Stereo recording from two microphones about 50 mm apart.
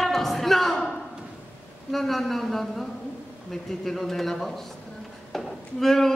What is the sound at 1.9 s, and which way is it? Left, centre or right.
Speech, centre.